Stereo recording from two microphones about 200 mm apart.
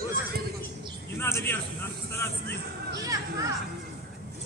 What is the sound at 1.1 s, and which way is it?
Speech, 10° left (ahead or behind).